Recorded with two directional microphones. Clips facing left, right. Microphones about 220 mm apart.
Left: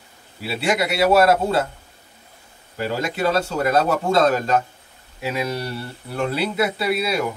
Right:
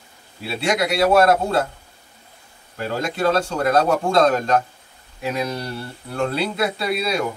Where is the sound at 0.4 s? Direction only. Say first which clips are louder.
Even; 5° left (ahead or behind).